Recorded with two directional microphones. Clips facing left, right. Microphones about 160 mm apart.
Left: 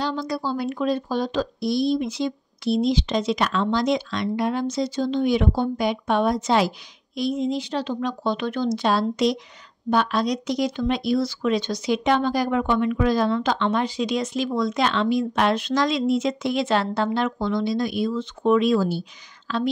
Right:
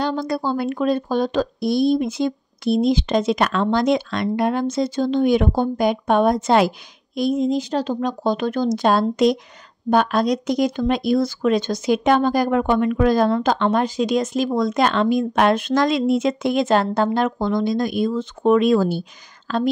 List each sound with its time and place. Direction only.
0.0 s speech: 55° right (ahead or behind)